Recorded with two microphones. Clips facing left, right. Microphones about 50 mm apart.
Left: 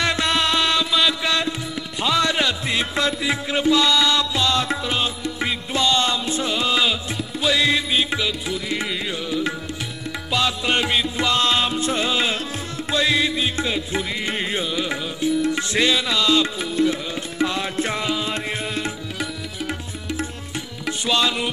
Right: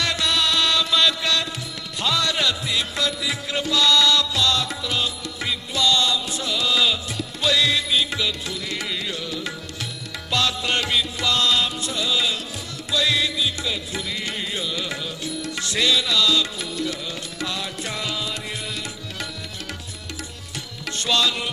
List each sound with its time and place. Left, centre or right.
0.0 s music: left
0.9 s mantra: centre
2.0 s music: left
12.9 s music: left
14.7 s music: left
20.8 s music: centre